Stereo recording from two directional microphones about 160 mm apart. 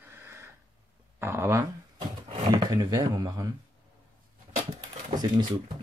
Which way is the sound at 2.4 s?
25° right (ahead or behind).